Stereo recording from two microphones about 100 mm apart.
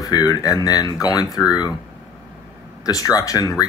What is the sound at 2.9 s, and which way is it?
Speech, 35° left (ahead or behind).